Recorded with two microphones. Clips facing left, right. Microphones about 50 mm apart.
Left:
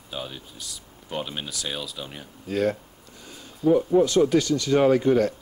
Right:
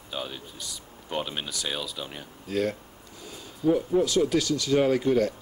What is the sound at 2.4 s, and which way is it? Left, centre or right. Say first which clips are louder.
Speech: left 3 dB; centre.